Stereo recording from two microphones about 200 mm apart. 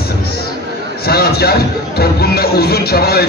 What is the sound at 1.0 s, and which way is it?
Speech, 50° left (ahead or behind).